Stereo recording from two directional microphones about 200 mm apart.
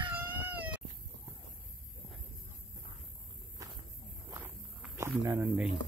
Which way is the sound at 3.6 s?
15° right (ahead or behind).